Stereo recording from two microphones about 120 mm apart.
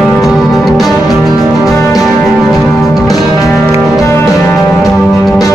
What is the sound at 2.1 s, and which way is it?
Music, 5° left (ahead or behind).